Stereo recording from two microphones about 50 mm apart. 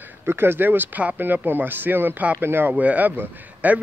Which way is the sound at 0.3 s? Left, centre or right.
Right.